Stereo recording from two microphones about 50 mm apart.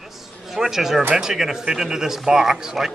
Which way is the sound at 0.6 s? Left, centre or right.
Centre.